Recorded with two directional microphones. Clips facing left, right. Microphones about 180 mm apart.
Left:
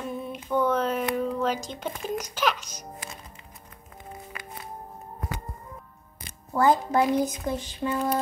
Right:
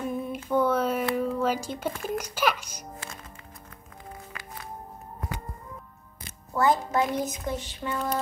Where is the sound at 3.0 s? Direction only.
15° left (ahead or behind).